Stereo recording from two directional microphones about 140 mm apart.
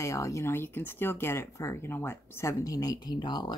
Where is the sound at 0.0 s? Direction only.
20° left (ahead or behind).